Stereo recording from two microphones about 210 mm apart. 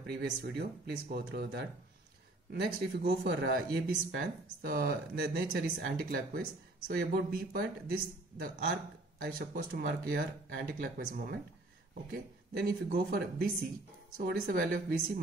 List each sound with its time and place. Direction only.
0.0 s speech: 50° right (ahead or behind)